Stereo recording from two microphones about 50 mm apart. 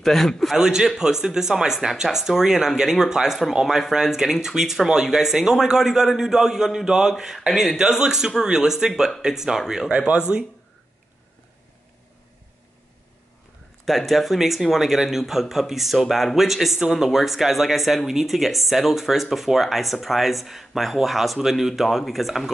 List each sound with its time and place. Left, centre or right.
0.0 s a man's voice: centre
0.6 s speech: centre
9.8 s speech: right
13.8 s speech: centre